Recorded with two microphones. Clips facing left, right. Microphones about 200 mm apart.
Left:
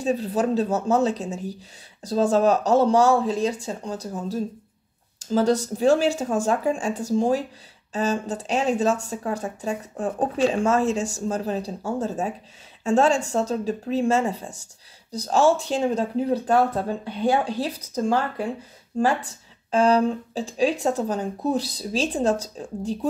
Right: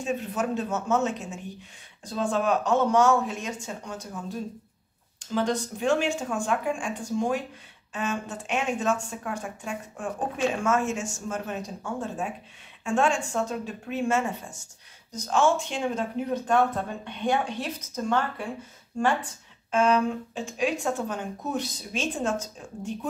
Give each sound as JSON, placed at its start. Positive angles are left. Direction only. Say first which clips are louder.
{"t": 0.0, "sound": "speech", "louder": "left 6 dB", "side_deg": 35}
{"t": 19.7, "sound": "speech", "louder": "left 4 dB", "side_deg": 35}